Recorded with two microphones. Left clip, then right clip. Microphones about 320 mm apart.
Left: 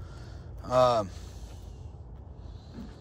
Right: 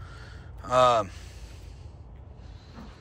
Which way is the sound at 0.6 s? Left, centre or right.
Centre.